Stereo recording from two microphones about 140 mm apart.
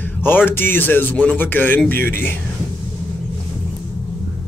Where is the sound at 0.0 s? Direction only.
15° left (ahead or behind).